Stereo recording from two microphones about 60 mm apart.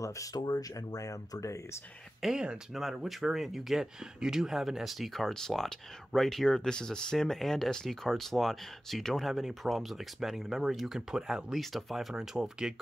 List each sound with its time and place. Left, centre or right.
0.0 s speech: left
2.2 s speech: centre